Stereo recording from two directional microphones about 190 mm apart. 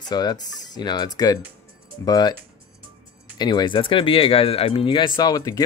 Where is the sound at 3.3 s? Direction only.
20° left (ahead or behind).